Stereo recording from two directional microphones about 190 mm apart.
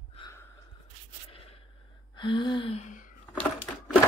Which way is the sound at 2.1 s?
25° left (ahead or behind).